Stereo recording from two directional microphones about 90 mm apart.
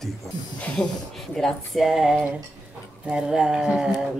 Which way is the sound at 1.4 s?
Centre (ahead or behind).